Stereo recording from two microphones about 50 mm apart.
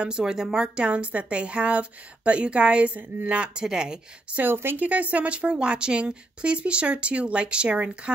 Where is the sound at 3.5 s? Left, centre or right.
Centre.